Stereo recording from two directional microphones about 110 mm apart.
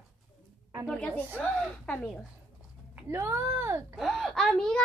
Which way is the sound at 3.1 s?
25° right (ahead or behind).